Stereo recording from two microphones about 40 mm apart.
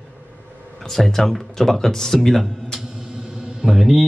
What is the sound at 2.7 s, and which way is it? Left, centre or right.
Music, centre.